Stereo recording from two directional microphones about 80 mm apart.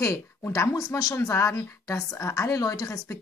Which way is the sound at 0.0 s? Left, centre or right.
Left.